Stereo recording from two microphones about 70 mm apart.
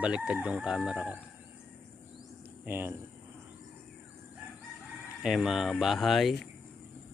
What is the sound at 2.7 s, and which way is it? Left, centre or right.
Speech, right.